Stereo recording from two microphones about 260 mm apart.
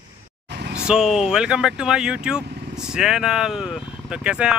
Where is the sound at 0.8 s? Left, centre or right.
Centre.